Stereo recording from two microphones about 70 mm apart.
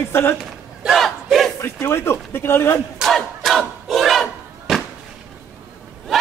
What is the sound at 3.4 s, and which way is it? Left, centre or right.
Battle cry, centre.